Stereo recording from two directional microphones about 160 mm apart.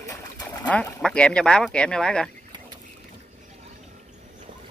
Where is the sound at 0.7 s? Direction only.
5° left (ahead or behind).